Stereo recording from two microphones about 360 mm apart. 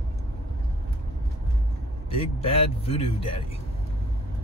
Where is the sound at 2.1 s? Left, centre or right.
Centre.